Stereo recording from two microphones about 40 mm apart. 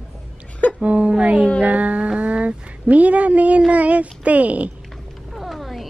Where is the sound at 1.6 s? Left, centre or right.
Right.